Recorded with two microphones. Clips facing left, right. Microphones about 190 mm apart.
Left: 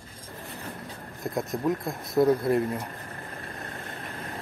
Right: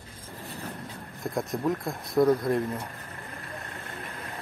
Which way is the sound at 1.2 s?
Centre (ahead or behind).